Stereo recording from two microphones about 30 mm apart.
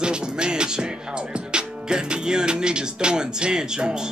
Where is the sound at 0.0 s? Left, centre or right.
Right.